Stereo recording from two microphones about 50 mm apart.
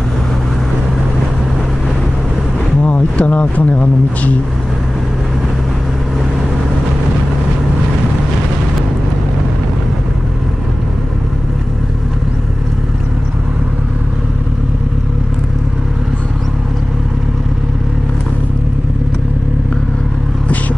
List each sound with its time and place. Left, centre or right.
2.8 s speech: left